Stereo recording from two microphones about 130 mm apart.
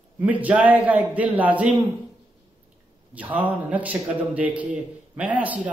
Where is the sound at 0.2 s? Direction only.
10° right (ahead or behind).